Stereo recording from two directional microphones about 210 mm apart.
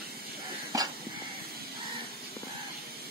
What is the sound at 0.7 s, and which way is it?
Dog, 15° right (ahead or behind).